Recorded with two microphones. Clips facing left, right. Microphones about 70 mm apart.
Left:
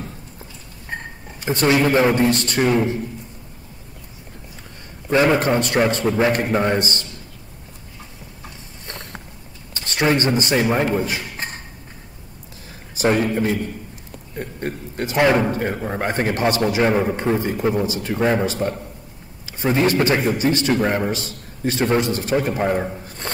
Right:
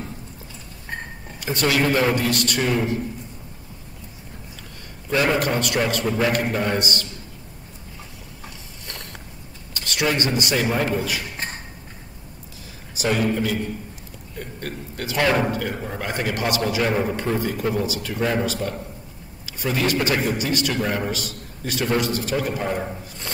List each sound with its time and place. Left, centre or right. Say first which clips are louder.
1.4 s a man's voice: left 4 dB; left
5.1 s a man's voice: left 4 dB; left
8.8 s walk: left 3 dB; left
9.8 s a man's voice: left 4 dB; left
12.9 s a man's voice: left 3 dB; left